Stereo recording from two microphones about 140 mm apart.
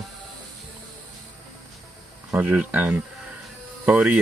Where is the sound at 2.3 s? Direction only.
10° right (ahead or behind).